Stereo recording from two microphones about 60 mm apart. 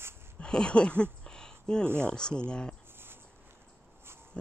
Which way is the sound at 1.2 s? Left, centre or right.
Centre.